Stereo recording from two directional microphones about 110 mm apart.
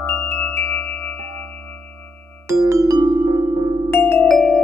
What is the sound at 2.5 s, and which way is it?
Music, 30° right (ahead or behind).